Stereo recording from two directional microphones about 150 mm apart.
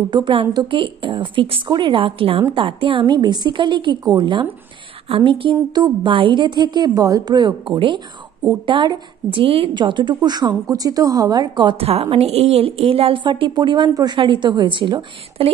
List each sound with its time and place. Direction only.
0.1 s a woman's voice: 30° right (ahead or behind)
11.8 s a woman's voice: 40° right (ahead or behind)